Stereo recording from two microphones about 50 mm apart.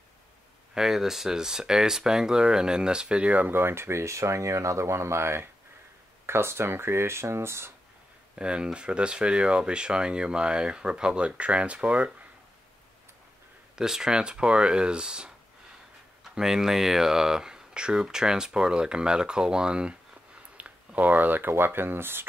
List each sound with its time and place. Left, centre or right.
0.7 s speech: centre
3.3 s speech: right
8.4 s speech: centre
13.7 s speech: centre
20.5 s speech: right